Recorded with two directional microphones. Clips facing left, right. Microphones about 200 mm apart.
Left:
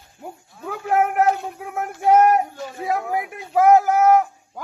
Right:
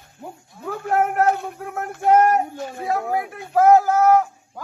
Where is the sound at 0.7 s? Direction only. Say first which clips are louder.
Left 1 dB; 10° left (ahead or behind).